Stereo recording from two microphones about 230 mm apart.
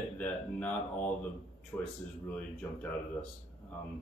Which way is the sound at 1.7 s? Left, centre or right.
Centre.